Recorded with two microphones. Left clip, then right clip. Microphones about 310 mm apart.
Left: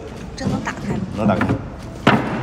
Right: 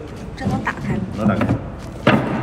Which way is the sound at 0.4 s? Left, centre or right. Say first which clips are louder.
Right 2 dB; centre.